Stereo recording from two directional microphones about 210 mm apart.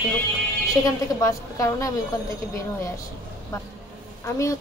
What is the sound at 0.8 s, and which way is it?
A woman's voice, 15° left (ahead or behind).